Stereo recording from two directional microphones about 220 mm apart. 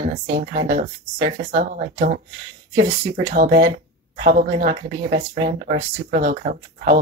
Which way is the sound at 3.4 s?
45° right (ahead or behind).